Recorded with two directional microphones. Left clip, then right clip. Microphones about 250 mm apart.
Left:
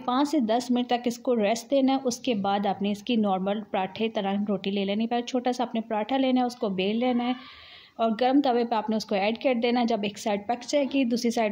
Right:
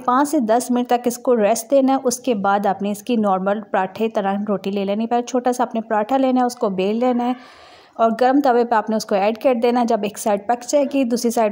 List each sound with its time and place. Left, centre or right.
0.0 s a woman's voice: right